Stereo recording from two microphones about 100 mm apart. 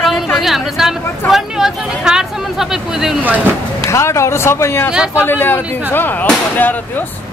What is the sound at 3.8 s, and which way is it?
Speech, 30° left (ahead or behind).